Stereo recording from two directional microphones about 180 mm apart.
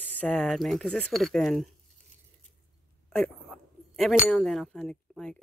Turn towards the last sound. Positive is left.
turn(degrees=5)  # may be behind; listen again after turning